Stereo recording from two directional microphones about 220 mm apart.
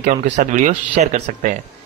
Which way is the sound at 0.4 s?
35° right (ahead or behind).